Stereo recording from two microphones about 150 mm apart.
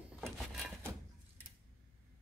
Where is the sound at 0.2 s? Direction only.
Centre (ahead or behind).